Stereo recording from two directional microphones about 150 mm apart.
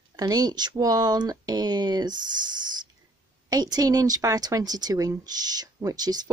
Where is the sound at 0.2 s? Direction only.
25° right (ahead or behind).